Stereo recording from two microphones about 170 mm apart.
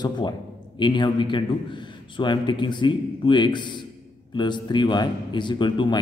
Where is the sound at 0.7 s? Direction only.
25° left (ahead or behind).